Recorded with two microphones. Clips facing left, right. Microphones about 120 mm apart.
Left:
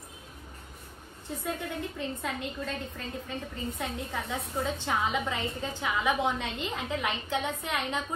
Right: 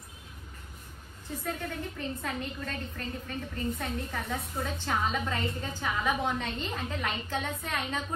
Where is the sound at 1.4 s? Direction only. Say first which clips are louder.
Left 1 dB; 20° left (ahead or behind).